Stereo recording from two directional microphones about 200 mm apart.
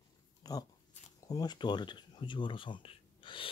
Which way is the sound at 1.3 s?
20° left (ahead or behind).